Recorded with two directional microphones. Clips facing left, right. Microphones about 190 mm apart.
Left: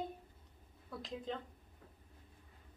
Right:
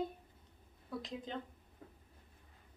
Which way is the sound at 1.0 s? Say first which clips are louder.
Left 4 dB; centre (ahead or behind).